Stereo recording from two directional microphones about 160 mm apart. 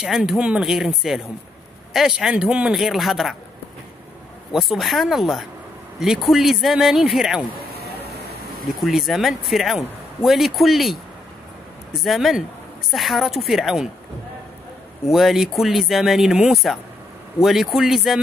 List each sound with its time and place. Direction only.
0.0 s speech: 5° right (ahead or behind)
4.5 s speech: centre (ahead or behind)
7.7 s a sound: 80° right
8.6 s speech: centre (ahead or behind)
15.0 s speech: centre (ahead or behind)